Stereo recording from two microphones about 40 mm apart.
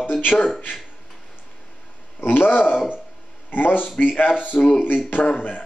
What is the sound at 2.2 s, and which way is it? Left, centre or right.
Speech, left.